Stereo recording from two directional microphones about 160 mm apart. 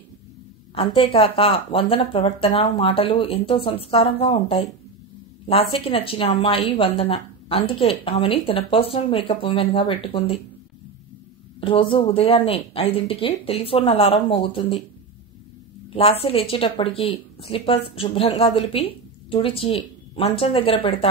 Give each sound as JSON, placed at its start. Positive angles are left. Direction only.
{"t": 0.7, "sound": "speech", "side_deg": 35}
{"t": 11.6, "sound": "speech", "side_deg": 35}
{"t": 15.9, "sound": "speech", "side_deg": 35}